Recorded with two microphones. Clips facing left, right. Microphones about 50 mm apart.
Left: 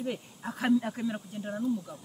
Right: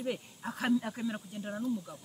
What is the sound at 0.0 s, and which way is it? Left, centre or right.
Speech, centre.